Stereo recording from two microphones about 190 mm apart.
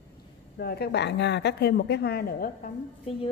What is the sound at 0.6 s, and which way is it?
A woman's voice, 55° left (ahead or behind).